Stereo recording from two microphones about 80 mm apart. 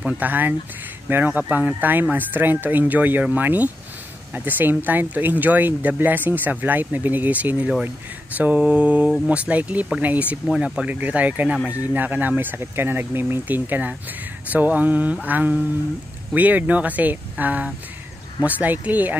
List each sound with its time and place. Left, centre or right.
0.0 s speech: right
8.4 s mantra: centre
10.0 s speech: right